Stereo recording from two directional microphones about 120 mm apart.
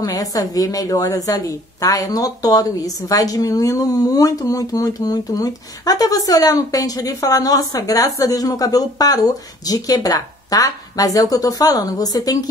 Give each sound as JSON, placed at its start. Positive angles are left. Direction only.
{"t": 0.0, "sound": "a woman's voice", "side_deg": 30}